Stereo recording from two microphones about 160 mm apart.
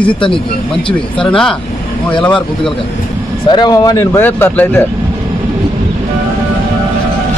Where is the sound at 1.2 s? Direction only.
5° left (ahead or behind).